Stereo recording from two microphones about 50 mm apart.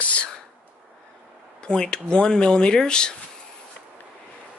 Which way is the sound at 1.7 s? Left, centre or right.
Centre.